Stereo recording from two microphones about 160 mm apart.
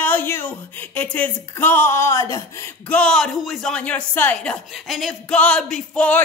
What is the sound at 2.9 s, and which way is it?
Speech, 5° left (ahead or behind).